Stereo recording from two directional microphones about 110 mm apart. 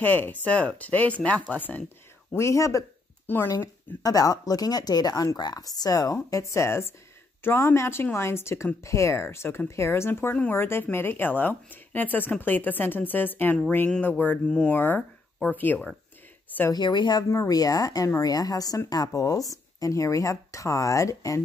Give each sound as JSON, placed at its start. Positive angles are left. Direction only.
{"t": 0.0, "sound": "speech", "side_deg": 15}
{"t": 2.3, "sound": "speech", "side_deg": 25}
{"t": 16.7, "sound": "speech", "side_deg": 45}
{"t": 17.2, "sound": "speech", "side_deg": 30}